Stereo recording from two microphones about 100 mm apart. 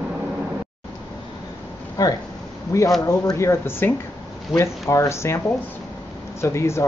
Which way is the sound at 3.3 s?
25° left (ahead or behind).